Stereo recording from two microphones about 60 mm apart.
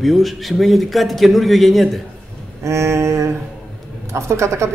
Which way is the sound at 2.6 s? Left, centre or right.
Right.